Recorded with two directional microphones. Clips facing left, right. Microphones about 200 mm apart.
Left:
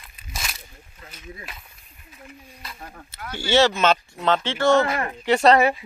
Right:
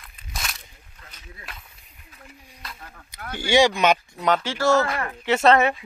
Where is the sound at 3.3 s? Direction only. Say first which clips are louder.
Even; 15° right (ahead or behind).